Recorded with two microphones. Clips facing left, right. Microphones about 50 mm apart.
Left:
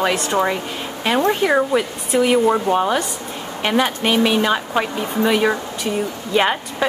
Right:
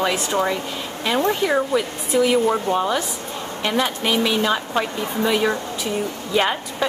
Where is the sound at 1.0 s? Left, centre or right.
Left.